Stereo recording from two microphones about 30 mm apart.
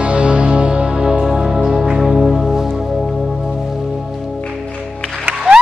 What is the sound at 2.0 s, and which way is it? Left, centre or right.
Music, centre.